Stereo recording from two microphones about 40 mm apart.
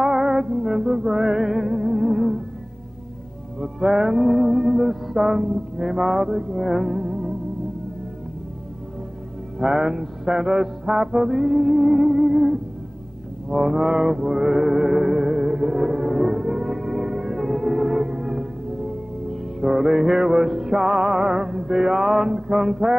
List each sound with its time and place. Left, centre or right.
0.0 s music: centre
3.5 s music: centre
9.6 s music: centre